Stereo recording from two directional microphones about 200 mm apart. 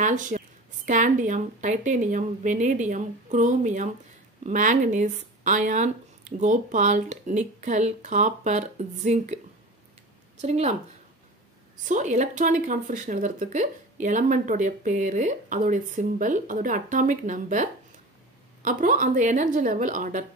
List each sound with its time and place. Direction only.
0.0 s a woman's voice: 40° right (ahead or behind)
10.4 s speech: 35° right (ahead or behind)
11.8 s speech: 40° right (ahead or behind)